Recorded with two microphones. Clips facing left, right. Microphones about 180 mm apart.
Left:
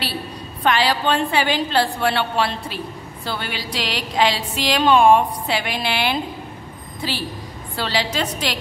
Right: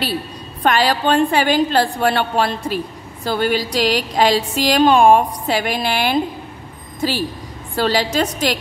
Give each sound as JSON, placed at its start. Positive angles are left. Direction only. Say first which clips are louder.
{"t": 0.7, "sound": "a woman's voice", "louder": "right 3 dB", "side_deg": -45}